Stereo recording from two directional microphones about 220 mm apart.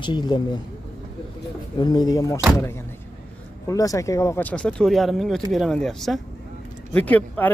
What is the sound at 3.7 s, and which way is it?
Speech, 15° left (ahead or behind).